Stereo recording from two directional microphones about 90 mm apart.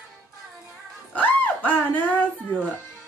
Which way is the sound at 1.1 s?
20° left (ahead or behind).